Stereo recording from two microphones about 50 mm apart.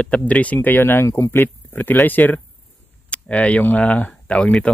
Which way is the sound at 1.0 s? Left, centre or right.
Left.